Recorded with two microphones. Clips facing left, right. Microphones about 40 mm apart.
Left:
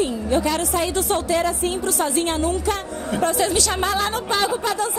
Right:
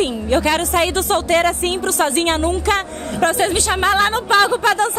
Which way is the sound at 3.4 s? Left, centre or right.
Right.